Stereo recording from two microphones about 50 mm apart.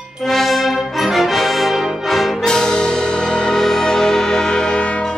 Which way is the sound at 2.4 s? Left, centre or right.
Centre.